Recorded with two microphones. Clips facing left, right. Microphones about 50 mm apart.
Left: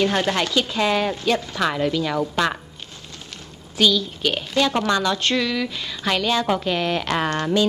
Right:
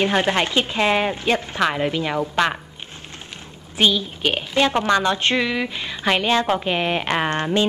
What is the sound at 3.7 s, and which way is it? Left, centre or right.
A woman's voice, right.